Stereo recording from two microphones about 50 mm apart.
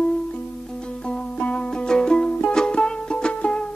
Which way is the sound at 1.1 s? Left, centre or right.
Left.